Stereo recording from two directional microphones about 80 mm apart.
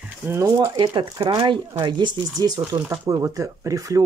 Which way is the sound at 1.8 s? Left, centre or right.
Right.